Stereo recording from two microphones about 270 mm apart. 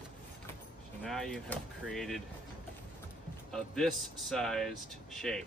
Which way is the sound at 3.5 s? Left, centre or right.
Centre.